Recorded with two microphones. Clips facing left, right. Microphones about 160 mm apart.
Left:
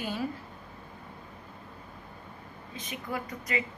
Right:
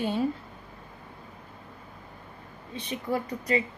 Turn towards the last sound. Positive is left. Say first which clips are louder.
# right 6 dB
turn(degrees=-30)  # may be behind; listen again after turning